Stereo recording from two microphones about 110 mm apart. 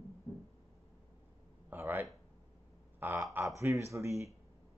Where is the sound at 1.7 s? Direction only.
15° right (ahead or behind).